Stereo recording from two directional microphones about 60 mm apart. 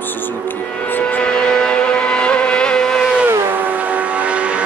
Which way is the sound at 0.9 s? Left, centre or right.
Left.